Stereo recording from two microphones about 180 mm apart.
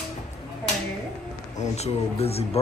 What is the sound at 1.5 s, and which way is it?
Speech, 40° left (ahead or behind).